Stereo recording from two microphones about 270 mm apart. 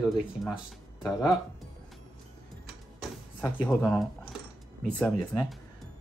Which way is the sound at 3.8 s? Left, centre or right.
Centre.